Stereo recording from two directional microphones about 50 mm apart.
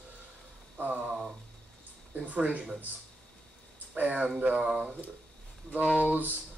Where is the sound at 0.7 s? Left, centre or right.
Right.